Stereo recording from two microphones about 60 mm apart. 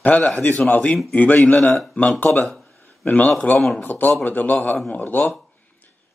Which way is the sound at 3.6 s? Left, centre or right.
Centre.